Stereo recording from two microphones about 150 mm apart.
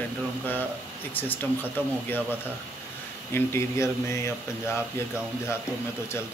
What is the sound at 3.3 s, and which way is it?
Speech, 15° left (ahead or behind).